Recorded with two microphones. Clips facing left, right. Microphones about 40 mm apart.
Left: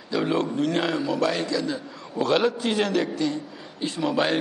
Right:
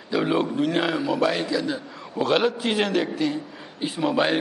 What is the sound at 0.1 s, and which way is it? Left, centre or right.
A man's voice, centre.